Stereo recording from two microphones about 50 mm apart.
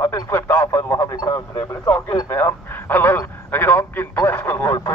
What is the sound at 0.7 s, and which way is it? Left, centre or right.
Speech, left.